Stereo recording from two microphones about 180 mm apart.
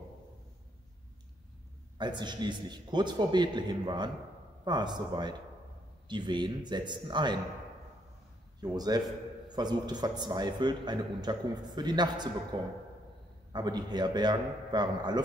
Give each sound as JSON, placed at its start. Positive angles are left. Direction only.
{"t": 2.0, "sound": "a man's voice", "side_deg": -25}
{"t": 8.5, "sound": "a man's voice", "side_deg": -20}